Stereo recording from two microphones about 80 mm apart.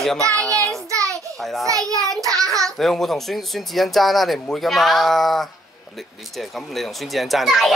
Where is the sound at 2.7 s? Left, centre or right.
Centre.